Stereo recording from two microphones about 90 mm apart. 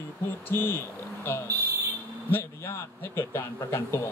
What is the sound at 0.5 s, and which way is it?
Speech, 25° left (ahead or behind).